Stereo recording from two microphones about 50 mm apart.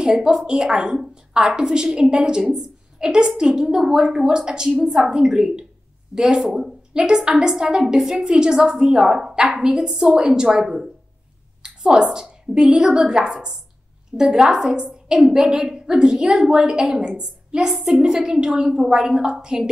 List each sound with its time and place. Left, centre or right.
0.0 s a woman's voice: centre
6.4 s speech: centre
6.9 s a woman's voice: centre